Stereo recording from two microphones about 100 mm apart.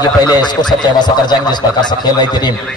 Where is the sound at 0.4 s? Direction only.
45° left (ahead or behind).